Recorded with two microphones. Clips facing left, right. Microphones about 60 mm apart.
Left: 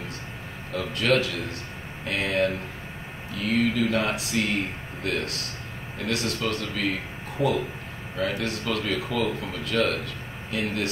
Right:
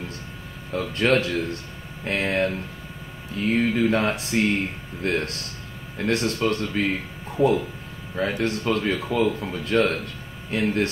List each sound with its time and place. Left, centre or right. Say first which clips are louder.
0.7 s speech: right 2 dB; right
8.2 s speech: right 3 dB; right